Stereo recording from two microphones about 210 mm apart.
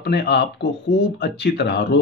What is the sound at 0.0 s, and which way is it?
A man's voice, 50° left (ahead or behind).